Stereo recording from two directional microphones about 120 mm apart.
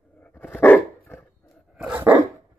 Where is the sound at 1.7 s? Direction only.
10° right (ahead or behind).